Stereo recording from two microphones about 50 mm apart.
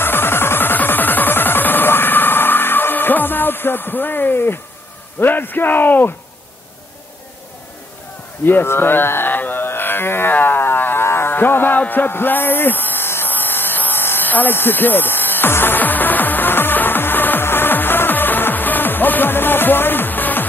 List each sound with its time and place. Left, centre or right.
0.0 s music: left
5.2 s speech: left
8.5 s carnatic music: left
10.3 s a sound: left
11.1 s music: left
11.8 s speech: left
13.3 s electric shaver: left